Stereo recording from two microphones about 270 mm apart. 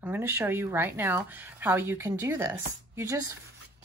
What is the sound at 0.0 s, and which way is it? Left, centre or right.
Speech, centre.